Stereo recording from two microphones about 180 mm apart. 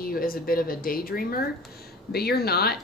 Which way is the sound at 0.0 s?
55° left (ahead or behind).